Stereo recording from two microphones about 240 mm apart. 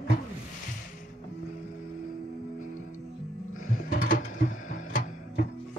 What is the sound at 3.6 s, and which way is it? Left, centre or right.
Mechanisms, left.